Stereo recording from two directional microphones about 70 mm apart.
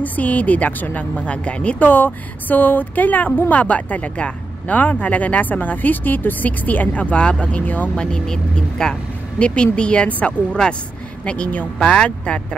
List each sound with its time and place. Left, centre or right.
0.0 s a woman's voice: left
7.9 s speech: centre